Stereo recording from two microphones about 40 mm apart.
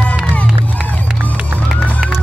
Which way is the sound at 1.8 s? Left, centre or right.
Centre.